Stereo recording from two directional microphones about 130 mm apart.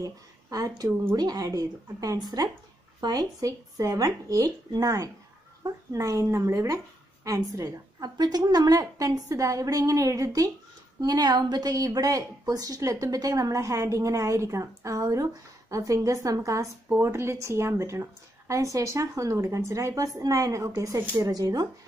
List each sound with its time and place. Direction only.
0.0 s a woman's voice: 30° right (ahead or behind)
21.3 s a woman's voice: 30° right (ahead or behind)